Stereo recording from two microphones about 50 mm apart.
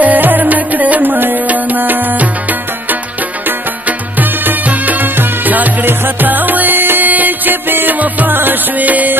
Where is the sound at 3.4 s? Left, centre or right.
Right.